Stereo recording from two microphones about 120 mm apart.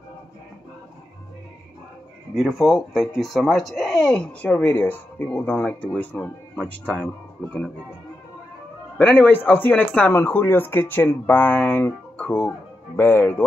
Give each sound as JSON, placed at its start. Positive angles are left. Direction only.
{"t": 2.3, "sound": "speech", "side_deg": 0}
{"t": 8.9, "sound": "speech", "side_deg": 15}